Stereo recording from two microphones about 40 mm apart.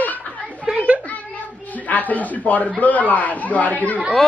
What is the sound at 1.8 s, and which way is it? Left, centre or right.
Speech, left.